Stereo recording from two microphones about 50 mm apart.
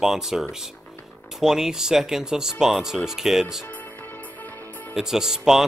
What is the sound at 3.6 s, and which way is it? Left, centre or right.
Music, left.